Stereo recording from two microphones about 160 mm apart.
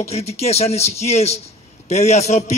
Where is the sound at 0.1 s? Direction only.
40° left (ahead or behind).